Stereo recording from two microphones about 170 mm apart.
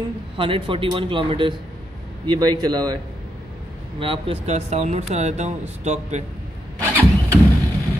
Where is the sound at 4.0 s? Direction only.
30° right (ahead or behind).